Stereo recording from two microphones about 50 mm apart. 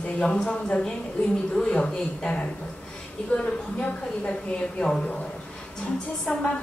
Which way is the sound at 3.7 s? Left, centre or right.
Left.